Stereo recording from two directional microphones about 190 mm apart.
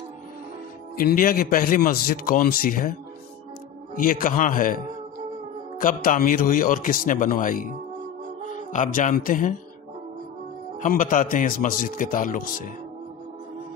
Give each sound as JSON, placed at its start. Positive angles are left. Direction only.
{"t": 0.9, "sound": "a man's voice", "side_deg": 50}
{"t": 10.8, "sound": "a man's voice", "side_deg": 45}